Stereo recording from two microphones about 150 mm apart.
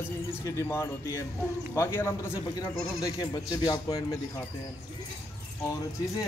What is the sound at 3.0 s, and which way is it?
Speech, 25° left (ahead or behind).